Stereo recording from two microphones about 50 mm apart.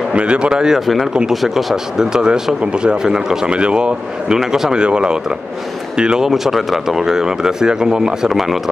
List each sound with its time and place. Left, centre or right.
0.1 s speech: right
0.7 s speech: centre